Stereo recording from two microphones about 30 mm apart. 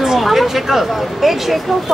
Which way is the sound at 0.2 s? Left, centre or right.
Centre.